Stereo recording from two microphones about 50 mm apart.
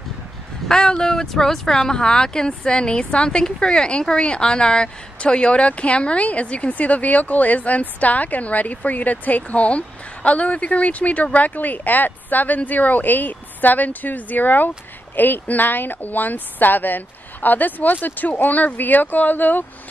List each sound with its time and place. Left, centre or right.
0.7 s a woman's voice: centre; by 19.6 s left